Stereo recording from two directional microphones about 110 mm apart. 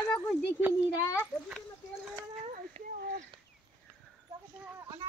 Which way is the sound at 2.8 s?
70° right (ahead or behind).